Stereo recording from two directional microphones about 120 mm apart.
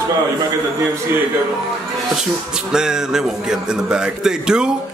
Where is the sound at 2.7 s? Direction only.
5° right (ahead or behind).